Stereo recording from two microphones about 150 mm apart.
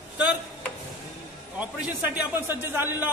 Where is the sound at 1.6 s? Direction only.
10° right (ahead or behind).